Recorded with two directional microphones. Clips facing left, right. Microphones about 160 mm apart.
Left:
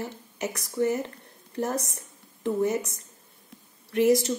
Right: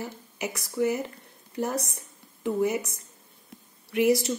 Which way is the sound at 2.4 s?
10° right (ahead or behind).